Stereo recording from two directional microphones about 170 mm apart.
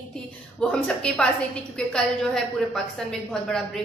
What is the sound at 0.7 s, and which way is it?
A woman's voice, 5° left (ahead or behind).